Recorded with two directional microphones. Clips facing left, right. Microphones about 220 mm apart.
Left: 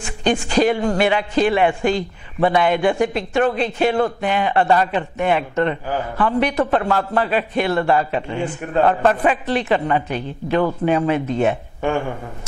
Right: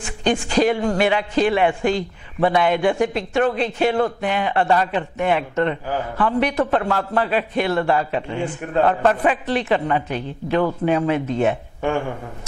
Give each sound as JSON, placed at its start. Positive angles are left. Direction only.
{"t": 0.2, "sound": "a man's voice", "side_deg": 10}